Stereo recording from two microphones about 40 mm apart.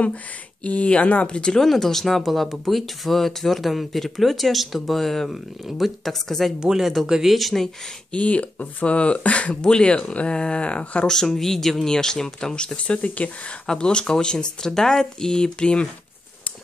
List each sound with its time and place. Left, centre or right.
0.7 s speech: left
1.6 s speech: centre
5.3 s speech: centre
6.2 s speech: centre
6.8 s speech: centre
7.3 s speech: centre
8.1 s speech: left
9.6 s speech: left
9.9 s speech: left
11.1 s speech: centre
12.5 s speech: left
13.7 s speech: left